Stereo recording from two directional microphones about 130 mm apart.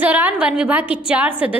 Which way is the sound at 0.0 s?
10° right (ahead or behind).